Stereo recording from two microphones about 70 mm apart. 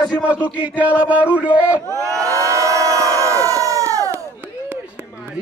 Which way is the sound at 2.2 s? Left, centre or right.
Right.